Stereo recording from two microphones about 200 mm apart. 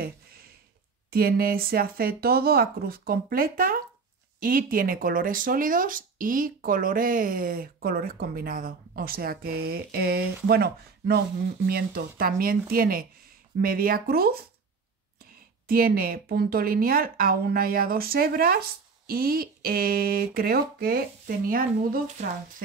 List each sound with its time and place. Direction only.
0.0 s a sound: 50° right (ahead or behind)
1.1 s speech: 50° right (ahead or behind)
15.6 s speech: 50° right (ahead or behind)